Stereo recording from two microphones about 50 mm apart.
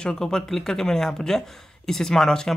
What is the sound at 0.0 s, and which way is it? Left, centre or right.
Speech, centre.